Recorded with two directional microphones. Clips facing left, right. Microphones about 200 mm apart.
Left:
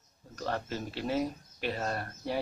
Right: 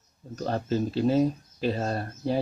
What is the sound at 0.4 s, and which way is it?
Speech, 25° right (ahead or behind).